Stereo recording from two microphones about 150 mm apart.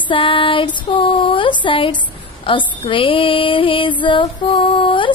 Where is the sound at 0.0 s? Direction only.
35° left (ahead or behind).